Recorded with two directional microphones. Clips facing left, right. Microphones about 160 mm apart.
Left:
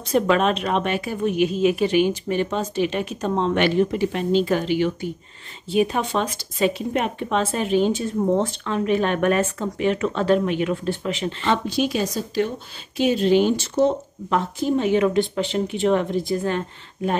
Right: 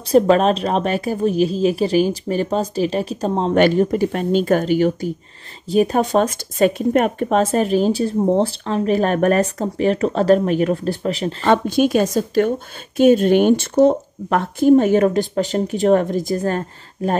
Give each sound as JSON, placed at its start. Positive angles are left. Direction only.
{"t": 0.1, "sound": "a woman's voice", "side_deg": -35}